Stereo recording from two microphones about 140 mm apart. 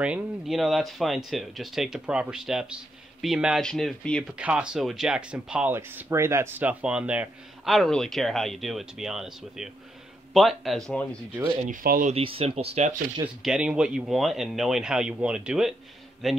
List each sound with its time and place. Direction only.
0.0 s speech: 5° right (ahead or behind)
4.4 s speech: 10° right (ahead or behind)
7.7 s speech: 5° left (ahead or behind)
11.6 s speech: 80° right
12.1 s speech: 40° right (ahead or behind)
13.4 s speech: 5° right (ahead or behind)